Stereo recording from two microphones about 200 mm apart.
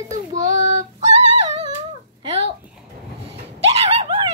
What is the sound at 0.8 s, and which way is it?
Female singing, 35° right (ahead or behind).